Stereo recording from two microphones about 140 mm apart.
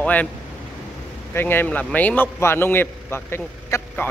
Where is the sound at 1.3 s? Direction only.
15° left (ahead or behind).